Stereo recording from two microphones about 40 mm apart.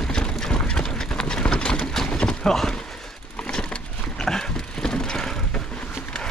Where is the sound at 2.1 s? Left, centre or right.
Left.